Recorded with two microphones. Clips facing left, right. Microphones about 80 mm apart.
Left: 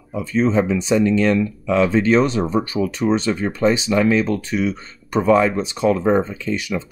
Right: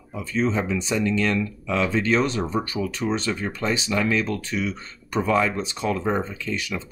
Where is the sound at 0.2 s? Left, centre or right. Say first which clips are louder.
Left 6 dB; left.